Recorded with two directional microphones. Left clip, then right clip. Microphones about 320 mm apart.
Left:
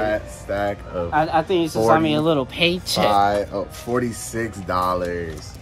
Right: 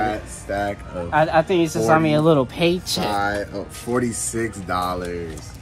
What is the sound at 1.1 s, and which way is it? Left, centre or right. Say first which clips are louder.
Speech: right 2 dB; centre.